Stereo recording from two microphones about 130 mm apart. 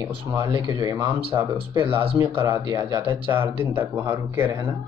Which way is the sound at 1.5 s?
45° right (ahead or behind).